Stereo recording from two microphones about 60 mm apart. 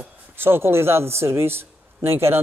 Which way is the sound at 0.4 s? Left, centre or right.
Right.